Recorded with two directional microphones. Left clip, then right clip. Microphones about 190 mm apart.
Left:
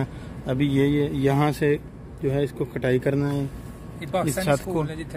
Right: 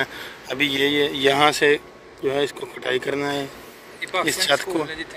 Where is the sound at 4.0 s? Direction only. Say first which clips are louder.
Right 2 dB; 65° left (ahead or behind).